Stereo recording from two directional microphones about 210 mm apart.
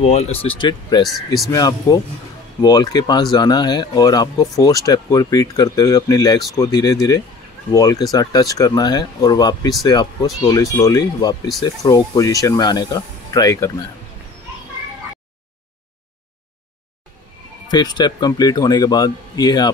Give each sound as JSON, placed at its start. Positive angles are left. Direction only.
{"t": 0.0, "sound": "speech", "side_deg": 30}
{"t": 1.0, "sound": "speech", "side_deg": 0}
{"t": 1.5, "sound": "speech", "side_deg": 15}
{"t": 17.6, "sound": "speech", "side_deg": 20}